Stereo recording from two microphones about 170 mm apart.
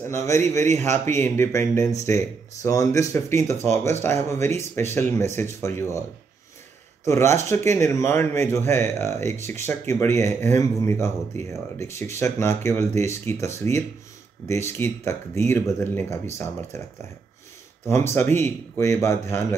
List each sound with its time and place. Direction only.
0.1 s speech: 15° left (ahead or behind)
0.7 s a man's voice: 45° right (ahead or behind)
0.9 s speech: 15° left (ahead or behind)
7.1 s speech: 15° left (ahead or behind)
17.8 s speech: 15° left (ahead or behind)